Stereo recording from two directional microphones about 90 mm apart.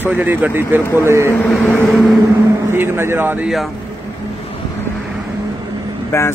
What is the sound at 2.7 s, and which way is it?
Speech, 25° right (ahead or behind).